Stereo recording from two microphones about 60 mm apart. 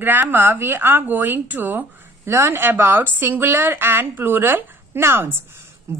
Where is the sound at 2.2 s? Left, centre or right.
Right.